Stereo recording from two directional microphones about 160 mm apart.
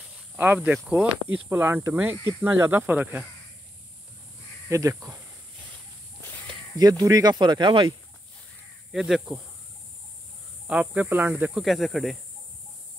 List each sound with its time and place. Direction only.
0.8 s speech: 10° right (ahead or behind)
4.6 s speech: 20° right (ahead or behind)
6.4 s speech: 25° right (ahead or behind)
8.9 s speech: 5° right (ahead or behind)
10.7 s speech: 10° right (ahead or behind)
11.6 s speech: centre (ahead or behind)